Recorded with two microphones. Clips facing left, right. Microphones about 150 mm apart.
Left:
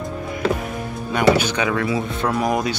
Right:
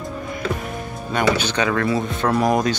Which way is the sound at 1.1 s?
10° left (ahead or behind).